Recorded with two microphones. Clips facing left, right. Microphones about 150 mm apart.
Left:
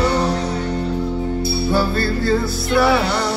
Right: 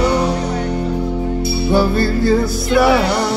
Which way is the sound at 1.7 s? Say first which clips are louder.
Right 5 dB; 20° right (ahead or behind).